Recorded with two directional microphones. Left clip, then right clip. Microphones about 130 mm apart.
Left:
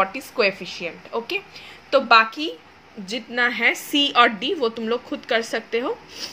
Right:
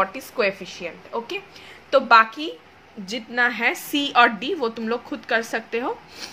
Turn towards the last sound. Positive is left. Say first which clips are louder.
# left 2 dB
turn(degrees=5)  # may be behind; listen again after turning